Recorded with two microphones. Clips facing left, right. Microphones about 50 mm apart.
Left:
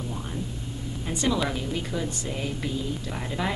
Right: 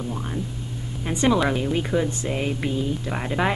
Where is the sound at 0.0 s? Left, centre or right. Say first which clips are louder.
Right 4 dB; right.